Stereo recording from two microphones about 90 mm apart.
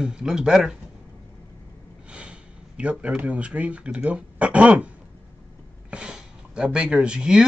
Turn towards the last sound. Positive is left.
turn(degrees=-5)  # may be behind; listen again after turning